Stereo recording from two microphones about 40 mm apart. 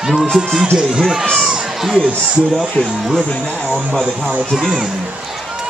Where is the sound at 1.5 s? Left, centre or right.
Centre.